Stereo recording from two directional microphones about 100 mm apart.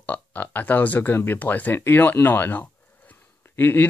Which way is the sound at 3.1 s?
20° left (ahead or behind).